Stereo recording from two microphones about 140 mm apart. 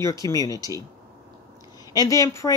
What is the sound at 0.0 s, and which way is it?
Speech, 25° left (ahead or behind).